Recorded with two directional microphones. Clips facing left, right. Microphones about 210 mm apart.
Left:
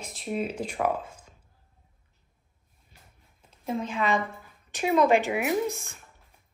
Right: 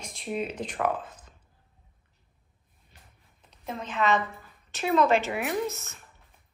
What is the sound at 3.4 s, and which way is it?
A woman's voice, 10° left (ahead or behind).